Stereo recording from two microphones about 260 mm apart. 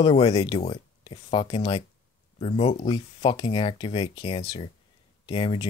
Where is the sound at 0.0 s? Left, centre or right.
Left.